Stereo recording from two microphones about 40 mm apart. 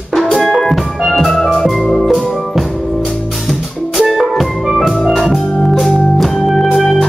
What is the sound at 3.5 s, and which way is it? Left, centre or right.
Music, centre.